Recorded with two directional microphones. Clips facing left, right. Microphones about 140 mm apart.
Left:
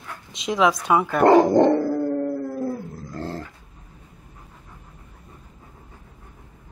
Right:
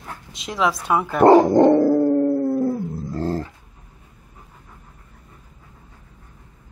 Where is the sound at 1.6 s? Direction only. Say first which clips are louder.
Right 4 dB; 20° right (ahead or behind).